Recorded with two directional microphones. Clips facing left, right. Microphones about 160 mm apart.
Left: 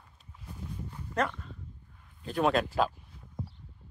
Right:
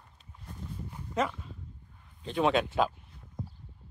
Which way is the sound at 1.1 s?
5° right (ahead or behind).